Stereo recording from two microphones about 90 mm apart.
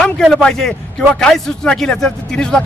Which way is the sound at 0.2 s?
5° left (ahead or behind).